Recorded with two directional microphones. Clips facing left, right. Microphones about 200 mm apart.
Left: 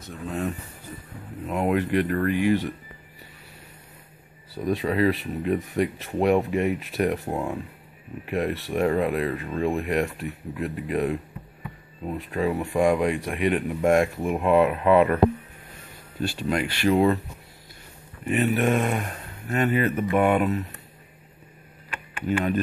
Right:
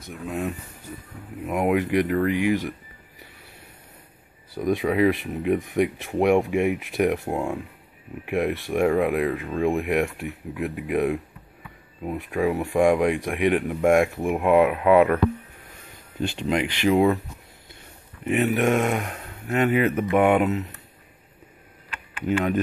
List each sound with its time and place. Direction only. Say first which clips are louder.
0.0 s speech: right 1 dB; 10° right (ahead or behind)
4.6 s speech: right 2 dB; 15° right (ahead or behind)
16.2 s speech: right 2 dB; 20° right (ahead or behind)
18.2 s speech: right 1 dB; 15° right (ahead or behind)